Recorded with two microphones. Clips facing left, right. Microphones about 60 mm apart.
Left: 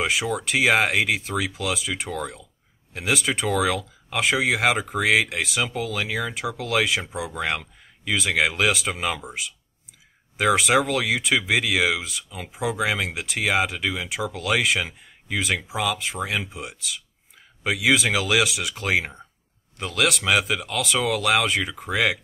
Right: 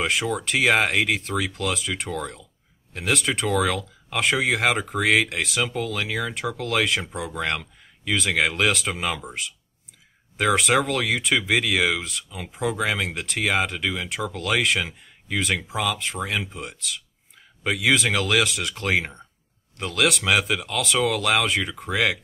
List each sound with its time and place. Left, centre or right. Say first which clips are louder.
0.0 s speech: even; centre